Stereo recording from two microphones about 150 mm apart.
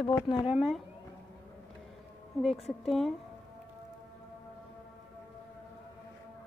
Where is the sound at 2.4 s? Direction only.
Centre (ahead or behind).